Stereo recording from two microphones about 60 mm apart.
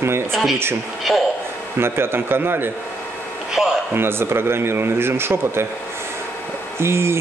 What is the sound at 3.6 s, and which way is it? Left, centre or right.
Speech, centre.